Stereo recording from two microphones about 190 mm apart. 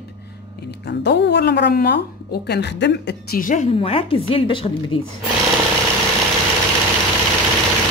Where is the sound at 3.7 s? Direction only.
30° left (ahead or behind).